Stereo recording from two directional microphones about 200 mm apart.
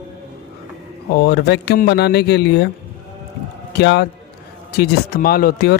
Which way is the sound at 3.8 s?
55° left (ahead or behind).